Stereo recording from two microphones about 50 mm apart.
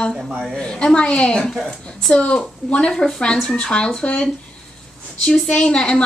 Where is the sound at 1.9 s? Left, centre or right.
Centre.